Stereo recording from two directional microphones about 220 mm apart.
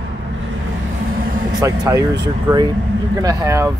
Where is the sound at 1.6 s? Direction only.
15° right (ahead or behind).